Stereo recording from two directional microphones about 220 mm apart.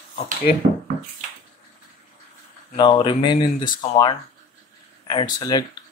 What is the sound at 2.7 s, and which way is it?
Speech, 20° left (ahead or behind).